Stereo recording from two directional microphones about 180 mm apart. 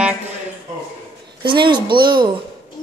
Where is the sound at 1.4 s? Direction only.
25° right (ahead or behind).